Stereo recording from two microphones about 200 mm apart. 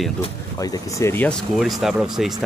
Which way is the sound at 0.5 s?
15° left (ahead or behind).